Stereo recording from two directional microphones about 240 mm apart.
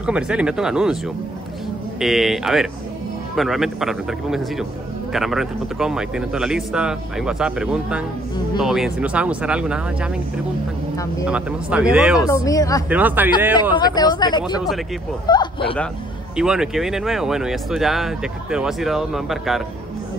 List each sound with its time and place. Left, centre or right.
0.0 s speech: centre
2.0 s speech: centre
11.2 s speech: centre
12.3 s speech: centre
12.9 s speech: centre
13.7 s speech: centre
14.4 s speech: centre
15.2 s speech: centre
16.3 s speech: centre